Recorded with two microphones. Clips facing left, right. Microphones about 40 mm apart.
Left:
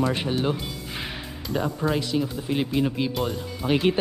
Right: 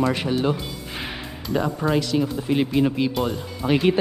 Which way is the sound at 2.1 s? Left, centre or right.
Centre.